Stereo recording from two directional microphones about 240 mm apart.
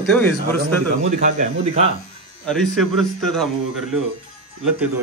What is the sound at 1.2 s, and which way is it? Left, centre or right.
Speech, right.